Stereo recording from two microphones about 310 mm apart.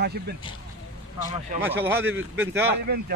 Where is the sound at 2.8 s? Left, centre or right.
Right.